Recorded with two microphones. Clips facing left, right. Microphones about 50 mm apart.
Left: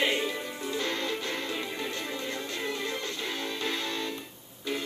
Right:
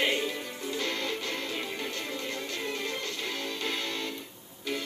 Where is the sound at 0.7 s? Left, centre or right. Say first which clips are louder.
Left 1 dB; left.